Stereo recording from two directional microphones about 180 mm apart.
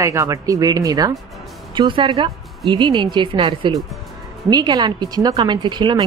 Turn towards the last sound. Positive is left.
turn(degrees=-25)  # may be behind; listen again after turning